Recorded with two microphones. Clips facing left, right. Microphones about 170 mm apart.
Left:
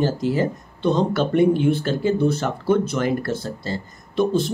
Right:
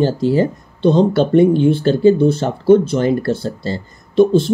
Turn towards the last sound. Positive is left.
turn(degrees=-30)  # may be behind; listen again after turning